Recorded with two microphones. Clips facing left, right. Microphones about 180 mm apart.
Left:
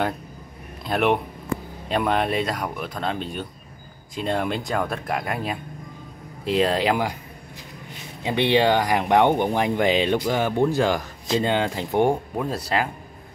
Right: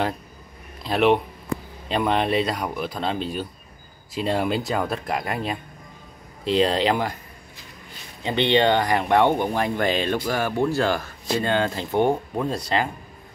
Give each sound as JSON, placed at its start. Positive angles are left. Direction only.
{"t": 0.8, "sound": "speech", "side_deg": 0}
{"t": 8.2, "sound": "speech", "side_deg": 5}